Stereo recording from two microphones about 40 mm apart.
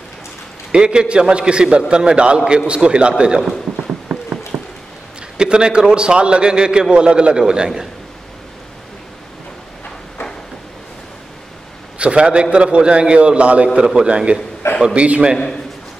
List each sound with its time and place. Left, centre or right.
0.7 s a man's voice: right
4.5 s a sound: right
5.4 s a man's voice: right
12.0 s a man's voice: right
13.7 s a man's voice: centre
14.6 s a man's voice: left
15.0 s a man's voice: right